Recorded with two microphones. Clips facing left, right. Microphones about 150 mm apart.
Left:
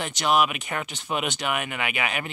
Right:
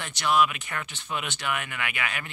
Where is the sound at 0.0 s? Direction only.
20° left (ahead or behind).